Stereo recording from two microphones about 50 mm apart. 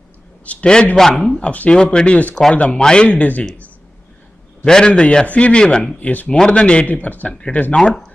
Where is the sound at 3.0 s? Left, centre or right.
Left.